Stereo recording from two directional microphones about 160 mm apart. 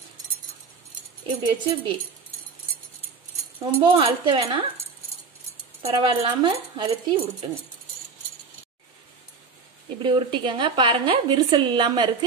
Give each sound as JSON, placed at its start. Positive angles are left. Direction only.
{"t": 1.2, "sound": "speech", "side_deg": -30}
{"t": 3.6, "sound": "speech", "side_deg": -30}
{"t": 5.9, "sound": "a woman's voice", "side_deg": -30}
{"t": 10.0, "sound": "a woman's voice", "side_deg": -30}